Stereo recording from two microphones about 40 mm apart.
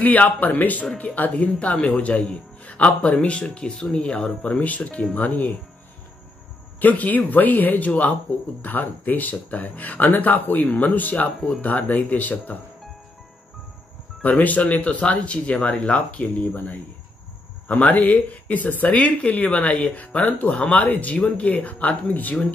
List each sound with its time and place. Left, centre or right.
0.0 s speech: left
4.6 s speech: left
6.8 s speech: left
14.2 s speech: left
17.6 s speech: left